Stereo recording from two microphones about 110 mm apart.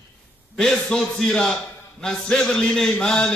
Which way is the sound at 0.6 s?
5° left (ahead or behind).